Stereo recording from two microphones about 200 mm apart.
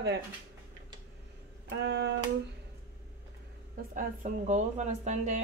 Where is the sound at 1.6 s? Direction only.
60° right (ahead or behind).